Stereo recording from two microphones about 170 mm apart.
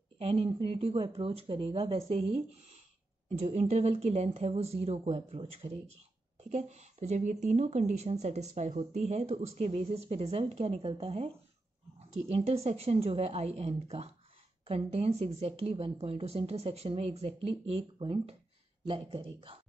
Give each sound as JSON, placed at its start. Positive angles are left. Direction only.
{"t": 0.2, "sound": "a woman's voice", "side_deg": -35}